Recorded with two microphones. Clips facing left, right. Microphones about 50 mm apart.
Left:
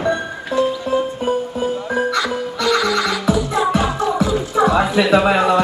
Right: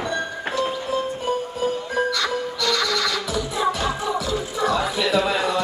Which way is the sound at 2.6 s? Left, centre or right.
Centre.